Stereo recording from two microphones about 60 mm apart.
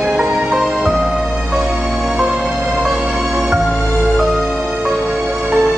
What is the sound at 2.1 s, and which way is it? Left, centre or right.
Music, centre.